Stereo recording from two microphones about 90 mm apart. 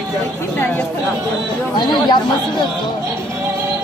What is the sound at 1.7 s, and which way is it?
Speech, 55° left (ahead or behind).